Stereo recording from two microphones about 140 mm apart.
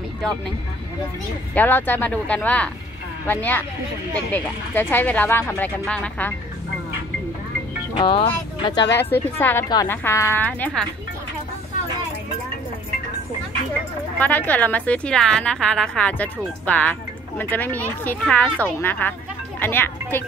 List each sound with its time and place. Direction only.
1.5 s a woman's voice: 15° left (ahead or behind)
8.0 s speech: 35° left (ahead or behind)
9.1 s a woman's voice: 15° left (ahead or behind)
14.1 s a woman's voice: 10° left (ahead or behind)